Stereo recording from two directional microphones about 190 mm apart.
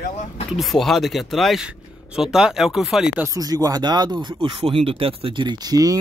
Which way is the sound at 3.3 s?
20° right (ahead or behind).